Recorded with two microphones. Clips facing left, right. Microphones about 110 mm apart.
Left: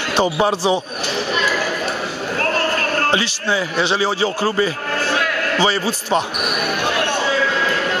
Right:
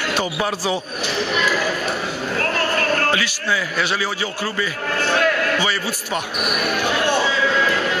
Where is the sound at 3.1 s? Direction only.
25° left (ahead or behind).